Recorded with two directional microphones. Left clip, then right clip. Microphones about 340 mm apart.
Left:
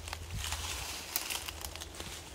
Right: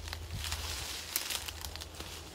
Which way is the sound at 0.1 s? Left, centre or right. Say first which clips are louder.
Left 1 dB; centre.